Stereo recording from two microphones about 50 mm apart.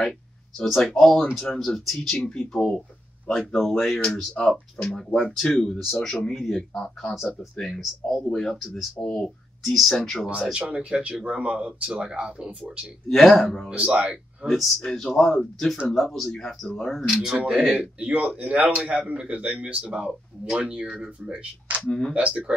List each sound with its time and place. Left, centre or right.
0.7 s speech: centre
8.5 s speech: centre
8.9 s speech: centre
9.6 s speech: centre
10.2 s a man's voice: centre
13.1 s speech: centre
13.7 s a man's voice: right
14.4 s speech: centre
17.1 s a man's voice: centre